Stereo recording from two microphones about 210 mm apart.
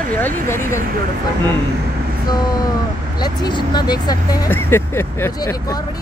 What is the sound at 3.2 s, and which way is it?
Speech, 20° left (ahead or behind).